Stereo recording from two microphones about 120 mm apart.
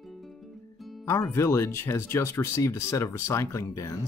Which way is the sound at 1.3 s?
25° left (ahead or behind).